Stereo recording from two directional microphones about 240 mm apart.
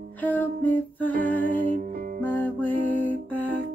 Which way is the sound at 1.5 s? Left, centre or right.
Right.